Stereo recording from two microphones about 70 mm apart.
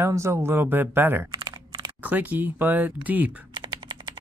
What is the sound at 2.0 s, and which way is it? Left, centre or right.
Speech, right.